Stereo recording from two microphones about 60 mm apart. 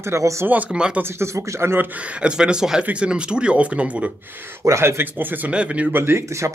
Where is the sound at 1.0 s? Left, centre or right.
Right.